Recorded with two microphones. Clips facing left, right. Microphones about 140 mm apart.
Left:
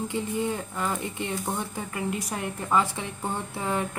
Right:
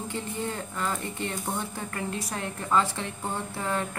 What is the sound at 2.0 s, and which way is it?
A woman's voice, 15° left (ahead or behind).